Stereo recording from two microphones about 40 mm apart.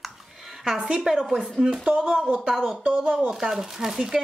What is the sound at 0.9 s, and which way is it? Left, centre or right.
Speech, centre.